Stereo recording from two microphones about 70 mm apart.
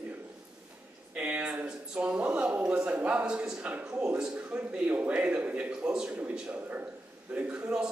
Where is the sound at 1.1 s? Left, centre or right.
Right.